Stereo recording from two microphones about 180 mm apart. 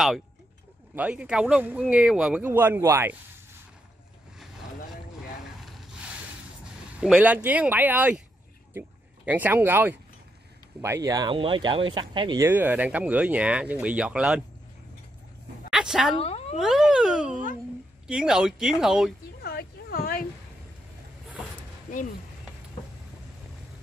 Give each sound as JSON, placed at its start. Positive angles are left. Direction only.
{"t": 0.9, "sound": "speech", "side_deg": -5}
{"t": 5.7, "sound": "rub", "side_deg": 0}
{"t": 7.0, "sound": "speech", "side_deg": -5}
{"t": 12.4, "sound": "speech", "side_deg": -10}
{"t": 15.7, "sound": "a woman's voice", "side_deg": -5}
{"t": 16.2, "sound": "vehicle", "side_deg": 35}
{"t": 16.5, "sound": "speech", "side_deg": 0}
{"t": 19.4, "sound": "a sound", "side_deg": 60}